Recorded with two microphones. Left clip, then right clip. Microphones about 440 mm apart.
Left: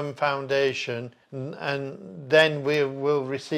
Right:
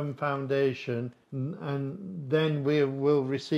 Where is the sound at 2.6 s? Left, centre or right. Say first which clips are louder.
Left 2 dB; left.